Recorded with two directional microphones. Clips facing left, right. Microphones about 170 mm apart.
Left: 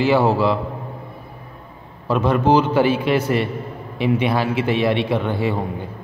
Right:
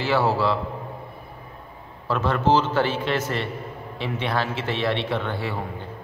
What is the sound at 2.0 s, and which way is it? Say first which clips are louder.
A man's voice: left 4 dB; 15° left (ahead or behind).